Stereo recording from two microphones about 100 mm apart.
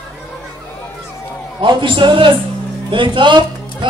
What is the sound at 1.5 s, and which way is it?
A man's voice, 55° right (ahead or behind).